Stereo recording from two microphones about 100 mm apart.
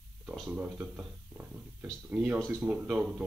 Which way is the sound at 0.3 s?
10° right (ahead or behind).